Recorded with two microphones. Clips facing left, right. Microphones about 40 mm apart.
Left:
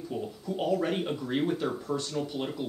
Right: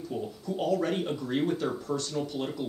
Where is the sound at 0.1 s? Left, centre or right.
Centre.